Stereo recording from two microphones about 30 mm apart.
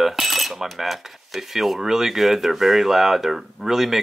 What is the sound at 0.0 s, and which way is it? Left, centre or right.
Speech, centre.